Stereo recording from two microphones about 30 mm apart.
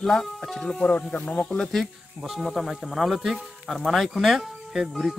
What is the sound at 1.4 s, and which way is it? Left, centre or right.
Speech, centre.